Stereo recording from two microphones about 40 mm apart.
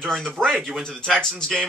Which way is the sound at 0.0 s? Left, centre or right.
Centre.